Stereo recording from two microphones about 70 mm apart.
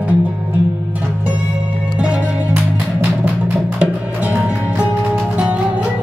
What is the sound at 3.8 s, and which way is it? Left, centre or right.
Music, centre.